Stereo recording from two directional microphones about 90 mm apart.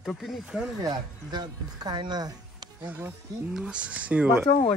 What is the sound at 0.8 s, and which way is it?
Speech, 50° right (ahead or behind).